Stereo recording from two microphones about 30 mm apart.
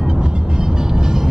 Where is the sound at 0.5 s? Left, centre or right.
Centre.